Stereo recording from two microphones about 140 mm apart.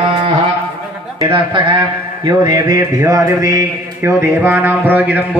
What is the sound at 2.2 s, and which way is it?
Music, 25° right (ahead or behind).